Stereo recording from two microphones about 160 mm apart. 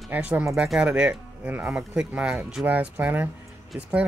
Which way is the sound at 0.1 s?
10° right (ahead or behind).